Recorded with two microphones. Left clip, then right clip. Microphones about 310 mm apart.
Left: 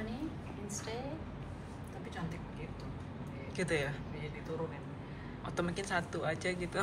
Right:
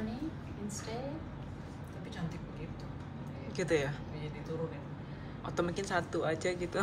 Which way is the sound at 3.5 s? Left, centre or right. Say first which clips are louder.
Right 3 dB; centre.